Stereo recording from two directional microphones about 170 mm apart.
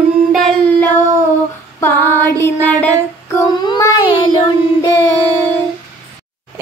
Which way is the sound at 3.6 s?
20° left (ahead or behind).